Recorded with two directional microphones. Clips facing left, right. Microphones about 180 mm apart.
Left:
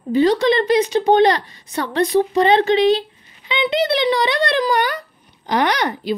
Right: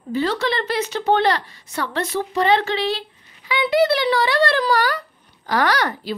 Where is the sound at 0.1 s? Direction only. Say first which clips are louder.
Left 7 dB; 15° left (ahead or behind).